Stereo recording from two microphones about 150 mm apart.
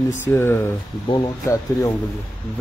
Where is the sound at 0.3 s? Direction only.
15° left (ahead or behind).